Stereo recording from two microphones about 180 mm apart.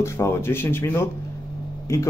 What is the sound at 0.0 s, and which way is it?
Speech, 15° left (ahead or behind).